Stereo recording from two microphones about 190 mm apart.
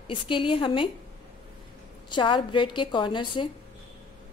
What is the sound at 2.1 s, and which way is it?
A woman's voice, 25° left (ahead or behind).